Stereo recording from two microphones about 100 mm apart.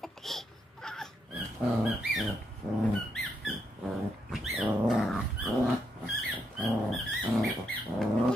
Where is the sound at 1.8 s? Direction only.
Centre (ahead or behind).